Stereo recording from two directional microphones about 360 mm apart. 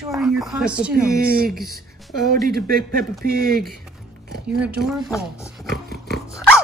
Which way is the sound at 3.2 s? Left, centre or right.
Right.